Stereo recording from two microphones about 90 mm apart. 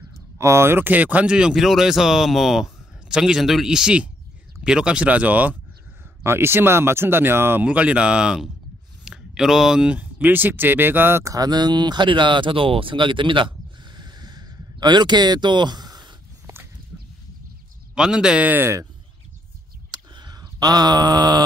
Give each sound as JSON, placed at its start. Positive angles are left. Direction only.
{"t": 0.4, "sound": "speech", "side_deg": -30}
{"t": 6.2, "sound": "speech", "side_deg": -25}
{"t": 7.6, "sound": "speech", "side_deg": -15}
{"t": 11.3, "sound": "speech", "side_deg": -50}
{"t": 17.9, "sound": "speech", "side_deg": -10}
{"t": 19.9, "sound": "a sound", "side_deg": -50}